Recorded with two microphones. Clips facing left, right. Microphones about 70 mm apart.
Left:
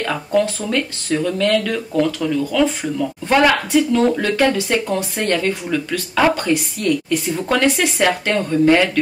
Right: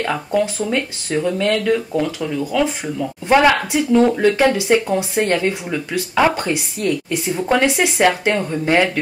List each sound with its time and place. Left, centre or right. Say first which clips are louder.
0.0 s speech: left 1 dB; centre